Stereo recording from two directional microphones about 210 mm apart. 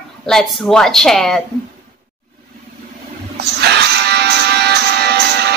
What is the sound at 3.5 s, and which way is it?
Music, 50° right (ahead or behind).